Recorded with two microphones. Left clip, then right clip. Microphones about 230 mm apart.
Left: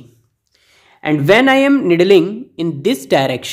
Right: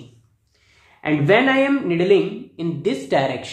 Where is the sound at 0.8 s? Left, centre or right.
Left.